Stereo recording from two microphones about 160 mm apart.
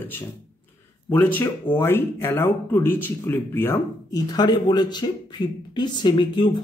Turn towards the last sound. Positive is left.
turn(degrees=30)  # may be behind; listen again after turning